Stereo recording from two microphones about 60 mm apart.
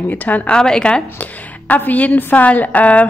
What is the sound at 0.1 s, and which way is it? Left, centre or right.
Speech, left.